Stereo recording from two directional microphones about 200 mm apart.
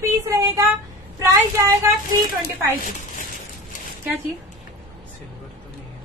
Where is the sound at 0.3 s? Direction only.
15° right (ahead or behind).